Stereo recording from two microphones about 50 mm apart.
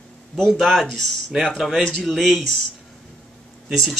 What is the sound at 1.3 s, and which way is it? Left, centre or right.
Speech, centre.